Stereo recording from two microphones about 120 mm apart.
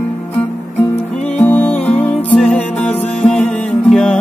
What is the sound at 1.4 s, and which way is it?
Music, 15° left (ahead or behind).